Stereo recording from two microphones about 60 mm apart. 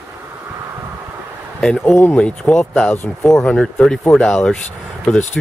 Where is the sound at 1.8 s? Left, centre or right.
Left.